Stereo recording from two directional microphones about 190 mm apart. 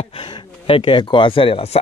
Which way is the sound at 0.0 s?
25° left (ahead or behind).